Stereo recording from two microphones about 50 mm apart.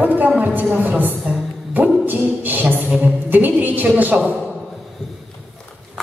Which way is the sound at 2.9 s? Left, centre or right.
Right.